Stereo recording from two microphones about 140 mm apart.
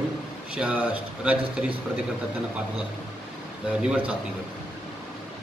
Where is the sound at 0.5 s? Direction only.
5° right (ahead or behind).